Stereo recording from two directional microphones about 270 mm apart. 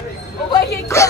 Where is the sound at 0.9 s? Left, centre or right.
Centre.